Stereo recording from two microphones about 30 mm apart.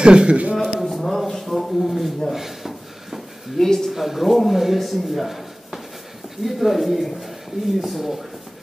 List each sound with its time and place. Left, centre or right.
0.0 s speech: right
0.7 s a sound: centre
1.9 s speech: centre
2.3 s a sound: centre
3.5 s speech: centre
3.9 s speech: centre